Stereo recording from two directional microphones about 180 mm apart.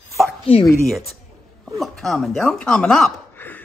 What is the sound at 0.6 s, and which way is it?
Speech, centre (ahead or behind).